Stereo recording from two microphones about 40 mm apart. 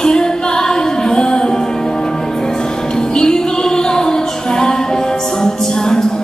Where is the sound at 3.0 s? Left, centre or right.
Centre.